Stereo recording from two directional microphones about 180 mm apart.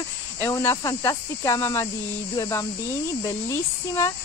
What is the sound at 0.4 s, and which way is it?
Speech, 15° left (ahead or behind).